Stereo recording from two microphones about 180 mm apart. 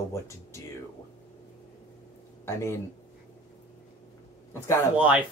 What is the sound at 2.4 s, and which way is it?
Speech, 15° left (ahead or behind).